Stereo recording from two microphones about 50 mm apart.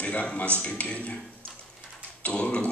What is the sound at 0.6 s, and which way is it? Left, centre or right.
Speech, left.